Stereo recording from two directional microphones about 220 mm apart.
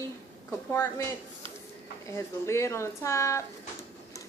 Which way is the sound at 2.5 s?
10° left (ahead or behind).